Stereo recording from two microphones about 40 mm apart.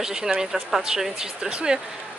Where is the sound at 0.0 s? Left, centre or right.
Centre.